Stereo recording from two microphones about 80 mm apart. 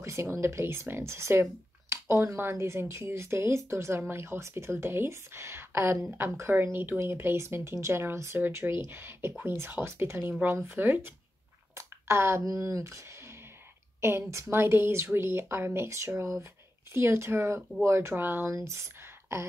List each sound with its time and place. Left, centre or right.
0.0 s speech: right
11.7 s a sound: right
12.4 s speech: right
14.0 s speech: right
18.5 s speech: right